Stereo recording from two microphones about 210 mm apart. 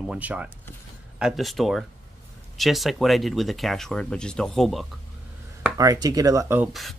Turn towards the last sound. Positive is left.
turn(degrees=0)  # may be behind; listen again after turning